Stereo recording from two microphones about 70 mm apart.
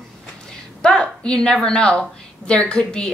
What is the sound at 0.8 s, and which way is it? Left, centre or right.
A woman's voice, centre.